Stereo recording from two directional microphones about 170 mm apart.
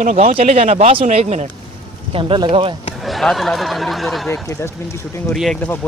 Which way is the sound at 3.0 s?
Centre (ahead or behind).